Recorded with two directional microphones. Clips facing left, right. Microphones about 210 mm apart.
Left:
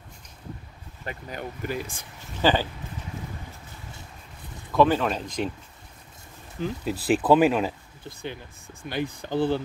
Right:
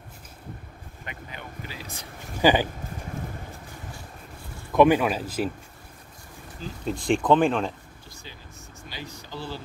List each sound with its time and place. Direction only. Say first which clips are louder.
1.0 s speech: left 6 dB; 45° left (ahead or behind)
2.4 s speech: right 2 dB; 15° right (ahead or behind)
4.7 s speech: right 2 dB; 15° right (ahead or behind)
6.8 s speech: right 1 dB; 5° left (ahead or behind)
8.8 s speech: left 11 dB; 55° left (ahead or behind)